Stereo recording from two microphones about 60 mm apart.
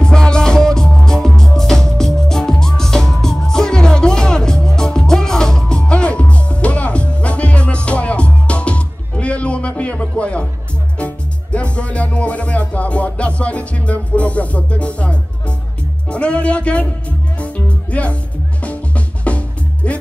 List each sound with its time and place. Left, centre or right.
0.0 s music: centre